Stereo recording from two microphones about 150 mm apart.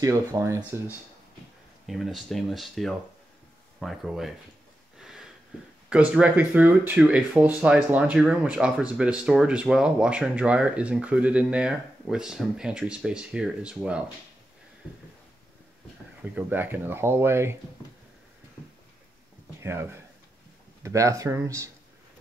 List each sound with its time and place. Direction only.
0.0 s speech: 25° right (ahead or behind)
1.9 s speech: centre (ahead or behind)
4.9 s a sound: 5° right (ahead or behind)
5.9 s speech: 10° right (ahead or behind)
16.2 s speech: 10° right (ahead or behind)
19.6 s speech: 15° right (ahead or behind)